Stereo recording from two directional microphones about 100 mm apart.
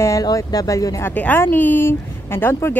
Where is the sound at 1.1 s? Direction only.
20° left (ahead or behind).